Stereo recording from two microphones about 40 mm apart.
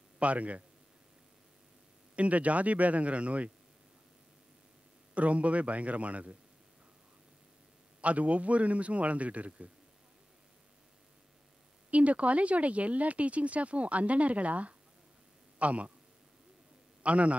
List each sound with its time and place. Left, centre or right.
0.2 s speech: right
2.1 s speech: right
5.1 s speech: right
8.0 s speech: right
11.9 s speech: right
17.0 s speech: right